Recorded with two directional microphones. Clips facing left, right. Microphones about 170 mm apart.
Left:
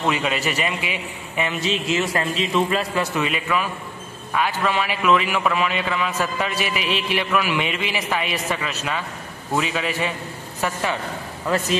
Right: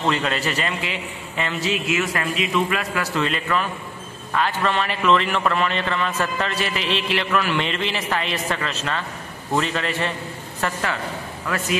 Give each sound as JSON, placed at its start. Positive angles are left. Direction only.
{"t": 0.0, "sound": "a man's voice", "side_deg": 10}
{"t": 3.2, "sound": "a man's voice", "side_deg": 10}
{"t": 11.4, "sound": "a man's voice", "side_deg": 30}